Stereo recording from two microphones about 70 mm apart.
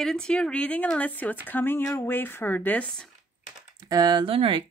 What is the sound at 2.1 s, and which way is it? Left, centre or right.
Speech, left.